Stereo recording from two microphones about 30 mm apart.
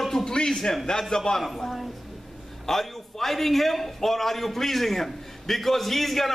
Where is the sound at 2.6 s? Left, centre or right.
Centre.